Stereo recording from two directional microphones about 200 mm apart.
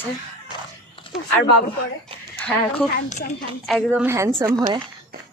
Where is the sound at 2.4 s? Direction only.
10° left (ahead or behind).